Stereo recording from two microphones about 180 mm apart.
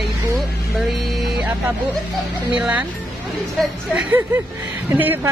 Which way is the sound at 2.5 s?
5° right (ahead or behind).